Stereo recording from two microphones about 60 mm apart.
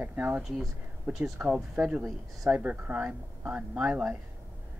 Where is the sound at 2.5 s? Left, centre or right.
Right.